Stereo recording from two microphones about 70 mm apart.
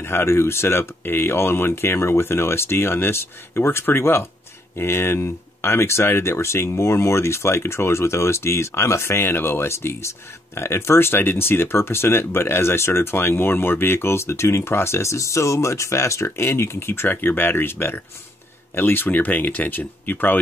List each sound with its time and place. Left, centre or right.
0.0 s speech: left